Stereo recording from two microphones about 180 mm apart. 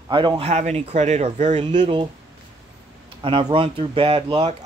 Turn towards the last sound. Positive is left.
turn(degrees=-35)  # may be behind; listen again after turning